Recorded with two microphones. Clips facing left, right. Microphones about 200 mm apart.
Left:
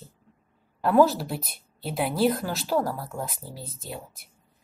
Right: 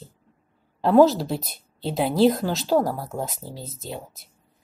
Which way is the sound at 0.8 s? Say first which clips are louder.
Right 4 dB; 20° right (ahead or behind).